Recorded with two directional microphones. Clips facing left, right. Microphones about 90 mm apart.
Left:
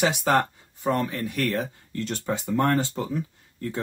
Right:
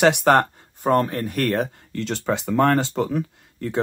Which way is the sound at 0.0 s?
65° right (ahead or behind).